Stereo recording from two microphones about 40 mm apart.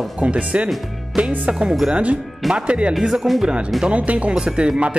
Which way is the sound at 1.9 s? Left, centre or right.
Right.